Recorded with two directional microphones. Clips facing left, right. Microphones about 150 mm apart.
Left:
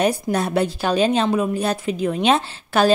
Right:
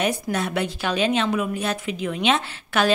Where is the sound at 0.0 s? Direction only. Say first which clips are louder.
Left 4 dB; 35° left (ahead or behind).